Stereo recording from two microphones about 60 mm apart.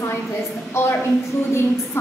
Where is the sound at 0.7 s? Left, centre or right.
Left.